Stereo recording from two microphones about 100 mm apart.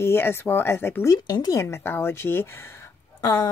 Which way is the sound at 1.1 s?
40° left (ahead or behind).